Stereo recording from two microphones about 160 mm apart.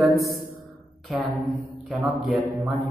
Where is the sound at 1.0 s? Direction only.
Centre (ahead or behind).